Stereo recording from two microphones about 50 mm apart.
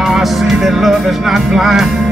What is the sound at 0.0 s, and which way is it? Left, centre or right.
Music, centre.